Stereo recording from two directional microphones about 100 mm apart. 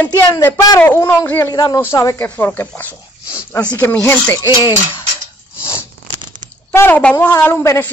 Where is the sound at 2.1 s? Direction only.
15° left (ahead or behind).